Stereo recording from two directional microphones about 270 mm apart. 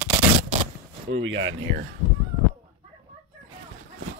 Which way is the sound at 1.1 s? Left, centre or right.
Right.